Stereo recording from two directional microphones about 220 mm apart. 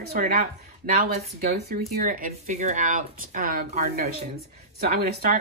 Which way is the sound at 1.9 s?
40° right (ahead or behind).